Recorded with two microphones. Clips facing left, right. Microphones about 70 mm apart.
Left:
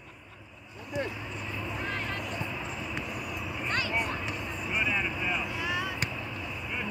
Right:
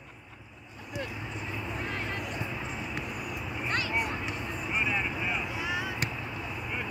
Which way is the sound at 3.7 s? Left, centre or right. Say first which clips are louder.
Even; centre.